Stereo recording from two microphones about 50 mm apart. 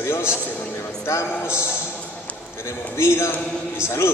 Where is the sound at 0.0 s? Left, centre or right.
Left.